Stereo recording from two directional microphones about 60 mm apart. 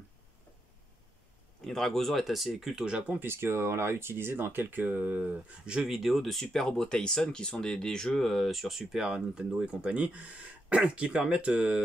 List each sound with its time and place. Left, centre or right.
1.7 s speech: centre
3.2 s speech: right
5.7 s speech: centre
9.0 s speech: centre